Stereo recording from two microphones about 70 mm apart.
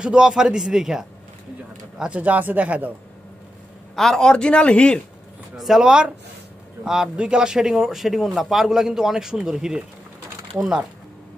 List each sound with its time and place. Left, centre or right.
0.0 s a man's voice: centre
2.0 s speech: centre
3.9 s a man's voice: centre
5.6 s a man's voice: centre